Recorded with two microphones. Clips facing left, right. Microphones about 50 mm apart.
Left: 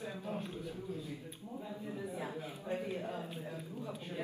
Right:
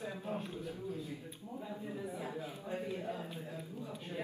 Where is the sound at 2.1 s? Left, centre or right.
Left.